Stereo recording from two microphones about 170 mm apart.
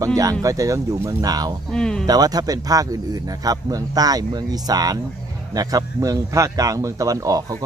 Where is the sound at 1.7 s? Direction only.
5° left (ahead or behind).